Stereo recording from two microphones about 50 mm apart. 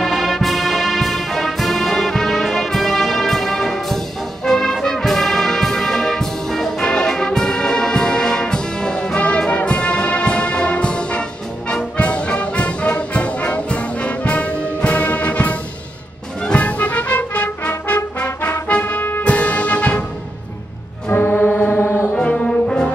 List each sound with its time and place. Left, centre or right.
0.0 s music: centre
4.8 s brass instrument: centre
12.0 s music: left
12.9 s brass instrument: left
16.5 s music: left
18.7 s brass instrument: left
19.2 s music: left
21.1 s music: left
22.1 s brass instrument: left